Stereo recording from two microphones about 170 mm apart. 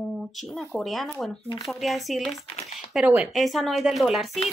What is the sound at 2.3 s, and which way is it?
Speech, 40° left (ahead or behind).